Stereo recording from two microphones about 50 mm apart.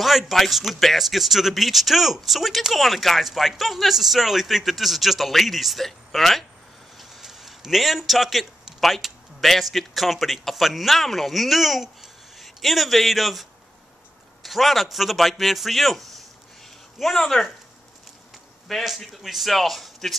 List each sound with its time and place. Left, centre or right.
0.0 s a man's voice: centre
18.7 s speech: centre